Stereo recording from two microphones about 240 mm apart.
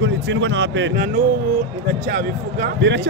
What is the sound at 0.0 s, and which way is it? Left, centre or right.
Speech, right.